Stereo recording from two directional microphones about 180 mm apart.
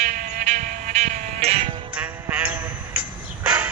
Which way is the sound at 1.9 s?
10° right (ahead or behind).